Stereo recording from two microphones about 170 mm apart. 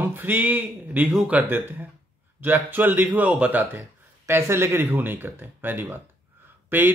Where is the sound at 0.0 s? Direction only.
10° right (ahead or behind).